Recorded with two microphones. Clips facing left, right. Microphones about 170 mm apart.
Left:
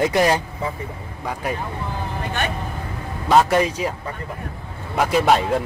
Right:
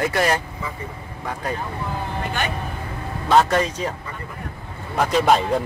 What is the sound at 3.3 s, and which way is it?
Speech, 10° left (ahead or behind).